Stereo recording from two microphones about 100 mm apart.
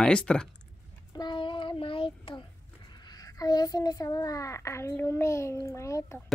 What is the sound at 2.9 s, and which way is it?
A child's voice, 45° left (ahead or behind).